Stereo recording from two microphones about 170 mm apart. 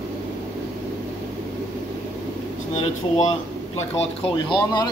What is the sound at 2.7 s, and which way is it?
Speech, 45° left (ahead or behind).